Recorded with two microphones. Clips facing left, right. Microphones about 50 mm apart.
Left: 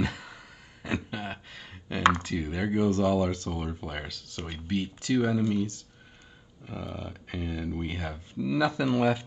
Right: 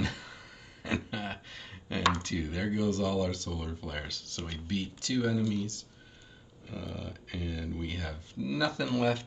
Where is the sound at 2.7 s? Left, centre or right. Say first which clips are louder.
Left 6 dB; left.